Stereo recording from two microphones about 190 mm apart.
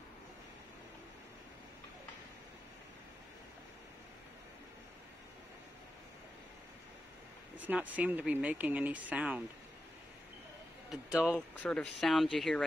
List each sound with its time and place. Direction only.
7.5 s speech: 10° right (ahead or behind)
11.2 s speech: 5° left (ahead or behind)